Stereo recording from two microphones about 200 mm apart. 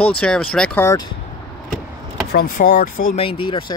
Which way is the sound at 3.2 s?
25° left (ahead or behind).